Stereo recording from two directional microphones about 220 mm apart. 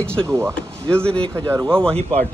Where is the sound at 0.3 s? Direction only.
10° right (ahead or behind).